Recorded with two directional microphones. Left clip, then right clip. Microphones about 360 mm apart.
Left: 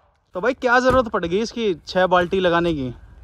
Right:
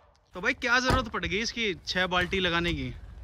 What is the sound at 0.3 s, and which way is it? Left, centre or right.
Speech, centre.